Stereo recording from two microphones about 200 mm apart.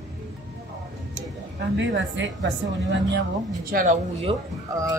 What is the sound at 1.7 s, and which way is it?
Speech, 65° right (ahead or behind).